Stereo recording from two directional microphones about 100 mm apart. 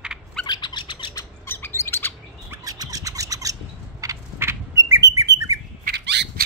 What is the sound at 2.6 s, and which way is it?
Rub, 35° right (ahead or behind).